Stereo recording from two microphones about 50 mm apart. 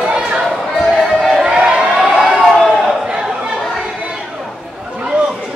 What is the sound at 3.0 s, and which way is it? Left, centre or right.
Chatter, centre.